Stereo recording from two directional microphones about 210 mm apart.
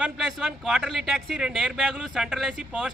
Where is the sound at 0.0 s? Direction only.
5° right (ahead or behind).